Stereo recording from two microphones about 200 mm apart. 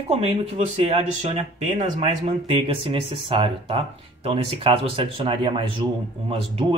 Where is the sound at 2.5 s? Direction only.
25° right (ahead or behind).